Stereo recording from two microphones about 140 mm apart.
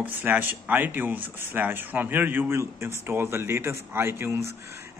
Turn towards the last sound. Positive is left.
turn(degrees=-20)  # may be behind; listen again after turning